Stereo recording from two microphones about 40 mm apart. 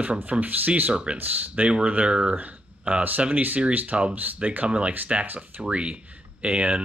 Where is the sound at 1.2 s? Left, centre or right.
Right.